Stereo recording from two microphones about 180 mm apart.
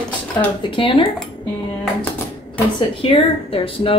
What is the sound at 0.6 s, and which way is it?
Speech, 30° left (ahead or behind).